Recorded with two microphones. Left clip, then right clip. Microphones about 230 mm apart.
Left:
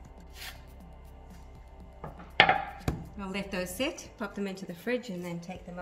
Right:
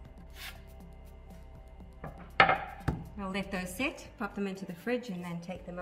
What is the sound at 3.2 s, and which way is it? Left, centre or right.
A woman's voice, centre.